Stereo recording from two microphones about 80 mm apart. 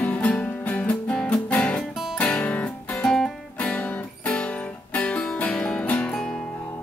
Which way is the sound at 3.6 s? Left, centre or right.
Centre.